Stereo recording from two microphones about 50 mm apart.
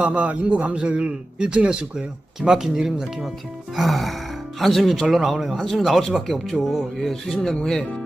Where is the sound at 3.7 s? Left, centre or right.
Centre.